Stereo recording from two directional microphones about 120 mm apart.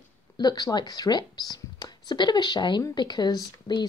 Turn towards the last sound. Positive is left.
turn(degrees=35)  # may be behind; listen again after turning